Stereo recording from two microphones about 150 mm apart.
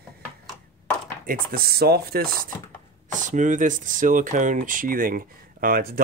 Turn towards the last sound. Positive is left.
turn(degrees=-75)  # may be behind; listen again after turning